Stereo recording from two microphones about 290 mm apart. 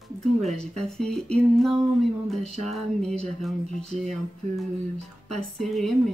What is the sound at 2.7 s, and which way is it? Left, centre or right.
Speech, centre.